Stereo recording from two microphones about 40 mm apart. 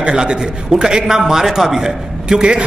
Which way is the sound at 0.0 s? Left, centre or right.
Right.